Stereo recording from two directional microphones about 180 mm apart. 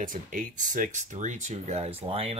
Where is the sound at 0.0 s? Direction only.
50° right (ahead or behind).